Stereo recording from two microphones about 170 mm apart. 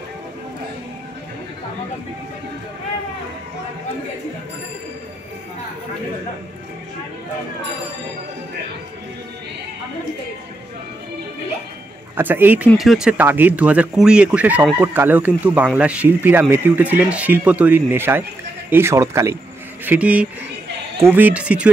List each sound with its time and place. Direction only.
12.2 s speech: 10° right (ahead or behind)